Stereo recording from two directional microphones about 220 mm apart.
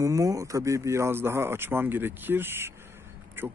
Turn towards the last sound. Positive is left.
turn(degrees=-10)  # may be behind; listen again after turning